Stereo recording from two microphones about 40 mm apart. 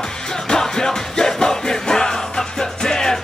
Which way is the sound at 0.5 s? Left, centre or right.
Centre.